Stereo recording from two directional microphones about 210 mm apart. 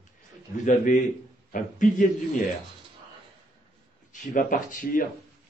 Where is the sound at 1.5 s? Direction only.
40° left (ahead or behind).